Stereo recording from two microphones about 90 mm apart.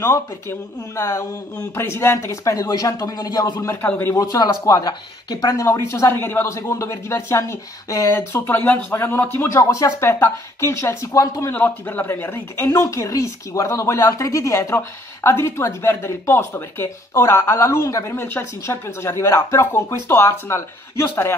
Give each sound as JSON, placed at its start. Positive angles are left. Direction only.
{"t": 0.0, "sound": "speech", "side_deg": 30}
{"t": 6.5, "sound": "speech", "side_deg": 35}
{"t": 11.5, "sound": "speech", "side_deg": 20}